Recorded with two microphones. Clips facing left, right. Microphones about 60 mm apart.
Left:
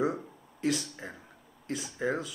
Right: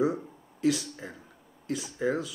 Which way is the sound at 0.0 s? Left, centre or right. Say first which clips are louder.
Right 3 dB; centre.